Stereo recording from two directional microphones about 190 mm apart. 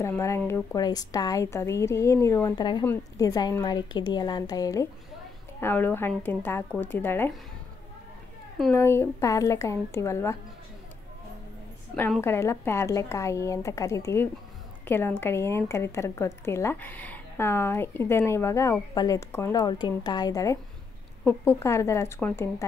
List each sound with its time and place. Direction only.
0.0 s a woman's voice: 15° left (ahead or behind)
8.7 s a woman's voice: 15° left (ahead or behind)
11.9 s a woman's voice: 10° left (ahead or behind)